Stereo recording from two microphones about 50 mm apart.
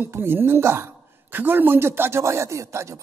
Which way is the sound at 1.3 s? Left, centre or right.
Right.